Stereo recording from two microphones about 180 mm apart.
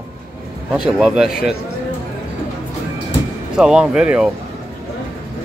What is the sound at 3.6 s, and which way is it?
Speech, 5° right (ahead or behind).